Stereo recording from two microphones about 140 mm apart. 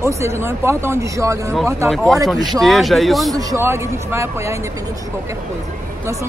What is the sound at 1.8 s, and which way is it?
Speech, centre (ahead or behind).